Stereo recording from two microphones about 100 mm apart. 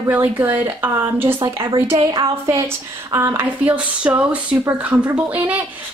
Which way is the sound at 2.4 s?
25° right (ahead or behind).